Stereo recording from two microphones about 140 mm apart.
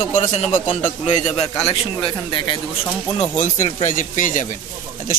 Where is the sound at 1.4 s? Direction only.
25° left (ahead or behind).